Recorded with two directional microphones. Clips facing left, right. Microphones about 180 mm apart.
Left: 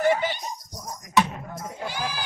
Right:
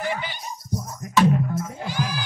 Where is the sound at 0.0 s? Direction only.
45° left (ahead or behind).